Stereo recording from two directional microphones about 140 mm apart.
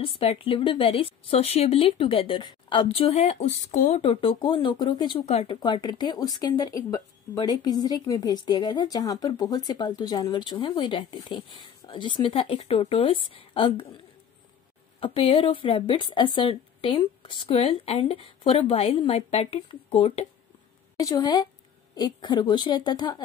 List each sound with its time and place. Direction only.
0.0 s speech: 40° left (ahead or behind); by 4.0 s 60° left (ahead or behind)
4.0 s speech: 40° left (ahead or behind)
5.2 s speech: 50° left (ahead or behind)
5.5 s speech: 30° left (ahead or behind)
15.0 s speech: 40° left (ahead or behind)
20.9 s a woman's voice: 25° left (ahead or behind)